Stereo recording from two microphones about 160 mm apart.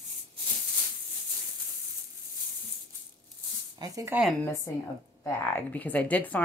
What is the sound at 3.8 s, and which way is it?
Speech, 20° right (ahead or behind).